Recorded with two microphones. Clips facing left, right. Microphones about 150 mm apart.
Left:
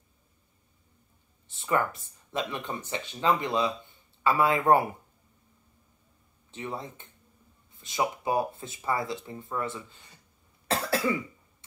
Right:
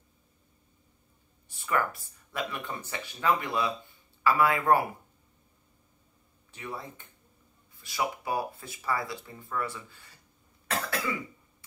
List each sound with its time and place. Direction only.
1.5 s speech: 25° left (ahead or behind)
6.5 s speech: 25° left (ahead or behind)
10.7 s cough: 30° left (ahead or behind)